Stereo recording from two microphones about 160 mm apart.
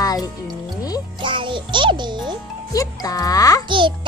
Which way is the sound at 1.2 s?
30° right (ahead or behind).